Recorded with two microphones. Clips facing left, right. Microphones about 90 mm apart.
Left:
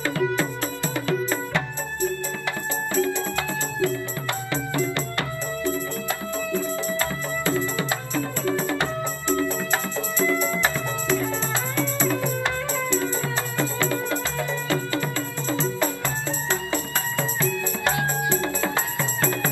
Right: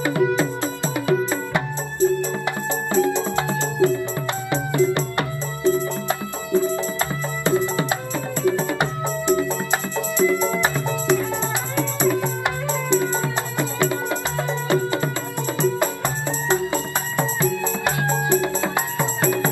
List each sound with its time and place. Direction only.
0.0 s music: 20° right (ahead or behind)
16.4 s music: 20° right (ahead or behind)